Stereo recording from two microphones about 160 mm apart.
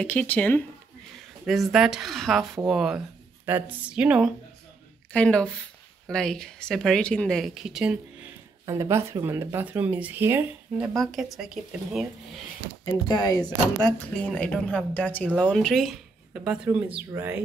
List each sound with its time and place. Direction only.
0.0 s speech: 10° left (ahead or behind)
1.4 s speech: centre (ahead or behind)
5.1 s speech: 5° left (ahead or behind)
8.6 s speech: 20° right (ahead or behind)
11.0 s speech: centre (ahead or behind)
12.8 s speech: 25° left (ahead or behind)
14.3 s speech: 5° left (ahead or behind)
16.4 s speech: 10° right (ahead or behind)